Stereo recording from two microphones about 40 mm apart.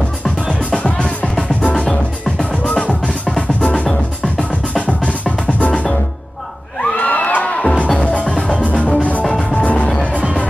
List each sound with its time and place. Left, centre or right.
0.7 s music: left
1.9 s music: centre
2.6 s music: left
6.8 s crowd: left
7.4 s music: left